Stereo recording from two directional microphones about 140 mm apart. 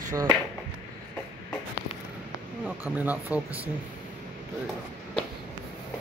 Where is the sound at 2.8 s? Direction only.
10° right (ahead or behind).